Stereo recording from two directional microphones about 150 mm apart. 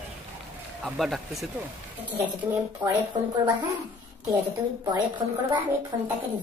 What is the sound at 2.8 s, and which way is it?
Speech, 30° right (ahead or behind).